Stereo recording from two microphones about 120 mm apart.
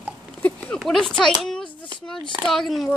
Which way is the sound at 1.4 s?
5° left (ahead or behind).